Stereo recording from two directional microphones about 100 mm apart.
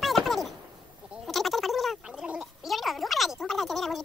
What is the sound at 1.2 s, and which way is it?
Gargling, centre (ahead or behind).